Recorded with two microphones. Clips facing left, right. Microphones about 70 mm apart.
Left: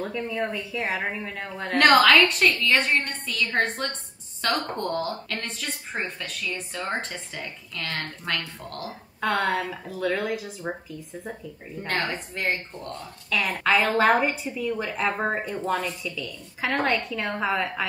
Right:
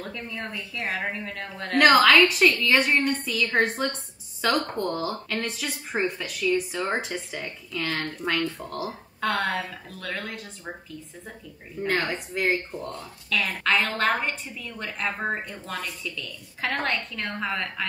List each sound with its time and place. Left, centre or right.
0.0 s speech: centre
11.8 s a woman's voice: centre